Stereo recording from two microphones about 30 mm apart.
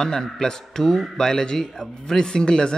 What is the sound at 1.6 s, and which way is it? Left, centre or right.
Speech, centre.